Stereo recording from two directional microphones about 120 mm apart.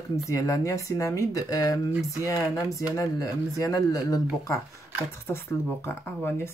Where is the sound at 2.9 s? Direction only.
30° left (ahead or behind).